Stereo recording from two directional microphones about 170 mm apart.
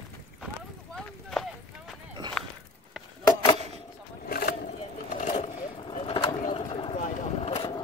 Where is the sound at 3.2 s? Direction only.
25° left (ahead or behind).